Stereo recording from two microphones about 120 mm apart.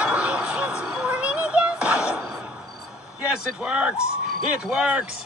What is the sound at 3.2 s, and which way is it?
A man's voice, 10° right (ahead or behind).